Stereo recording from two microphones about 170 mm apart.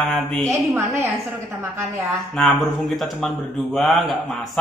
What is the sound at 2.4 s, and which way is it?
Speech, centre (ahead or behind).